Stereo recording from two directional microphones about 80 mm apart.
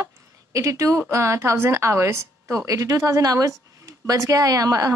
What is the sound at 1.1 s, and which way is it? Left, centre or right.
A woman's voice, right.